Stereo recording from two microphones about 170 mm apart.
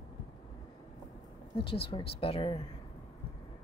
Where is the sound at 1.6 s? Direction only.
30° left (ahead or behind).